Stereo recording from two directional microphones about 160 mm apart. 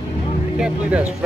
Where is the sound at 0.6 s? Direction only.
10° right (ahead or behind).